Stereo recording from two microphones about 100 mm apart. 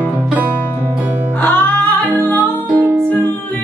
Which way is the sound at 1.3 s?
15° left (ahead or behind).